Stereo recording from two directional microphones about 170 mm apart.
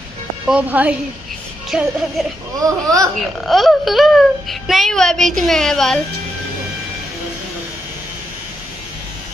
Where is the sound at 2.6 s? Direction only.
20° right (ahead or behind).